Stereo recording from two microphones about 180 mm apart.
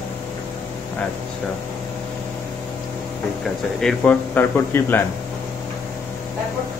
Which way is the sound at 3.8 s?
10° left (ahead or behind).